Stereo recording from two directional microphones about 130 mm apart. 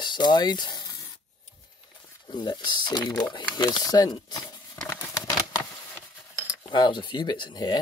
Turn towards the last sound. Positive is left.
turn(degrees=35)  # may be behind; listen again after turning